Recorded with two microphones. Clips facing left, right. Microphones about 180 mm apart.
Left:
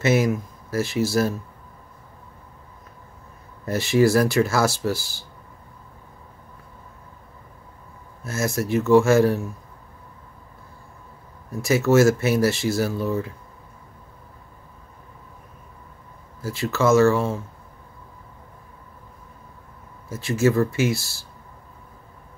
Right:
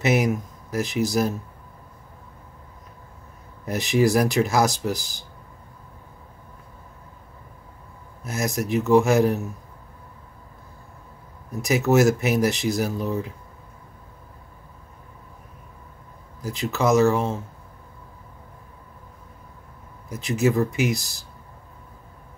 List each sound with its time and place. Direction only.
0.0 s speech: 15° right (ahead or behind)
3.6 s speech: 15° right (ahead or behind)
8.2 s speech: 15° right (ahead or behind)
11.6 s speech: 15° right (ahead or behind)
16.3 s speech: 15° right (ahead or behind)
20.1 s speech: 15° right (ahead or behind)